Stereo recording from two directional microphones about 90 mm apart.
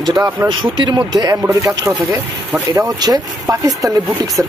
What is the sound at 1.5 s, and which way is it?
Speech, 40° right (ahead or behind).